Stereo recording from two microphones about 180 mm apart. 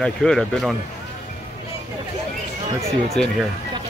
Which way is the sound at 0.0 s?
5° left (ahead or behind).